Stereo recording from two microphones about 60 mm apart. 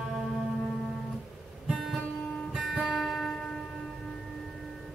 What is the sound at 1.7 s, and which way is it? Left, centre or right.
Music, centre.